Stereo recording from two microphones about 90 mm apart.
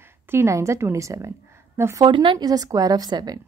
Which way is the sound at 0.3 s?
30° right (ahead or behind).